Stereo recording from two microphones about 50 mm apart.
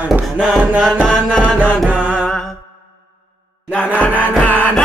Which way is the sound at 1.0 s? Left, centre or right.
Left.